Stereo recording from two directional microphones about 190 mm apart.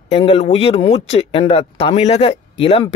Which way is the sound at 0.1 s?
30° left (ahead or behind).